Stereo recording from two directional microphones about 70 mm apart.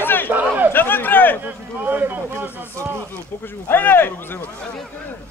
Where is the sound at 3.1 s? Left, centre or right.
Left.